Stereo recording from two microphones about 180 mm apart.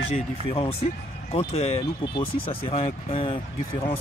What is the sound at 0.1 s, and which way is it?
Speech, 30° left (ahead or behind).